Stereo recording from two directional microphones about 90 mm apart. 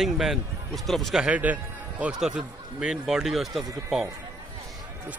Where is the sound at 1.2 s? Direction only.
15° right (ahead or behind); by 4.1 s centre (ahead or behind).